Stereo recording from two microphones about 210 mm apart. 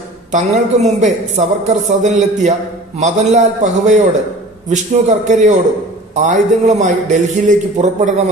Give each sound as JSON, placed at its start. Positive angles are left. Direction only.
{"t": 0.3, "sound": "a woman's voice", "side_deg": -35}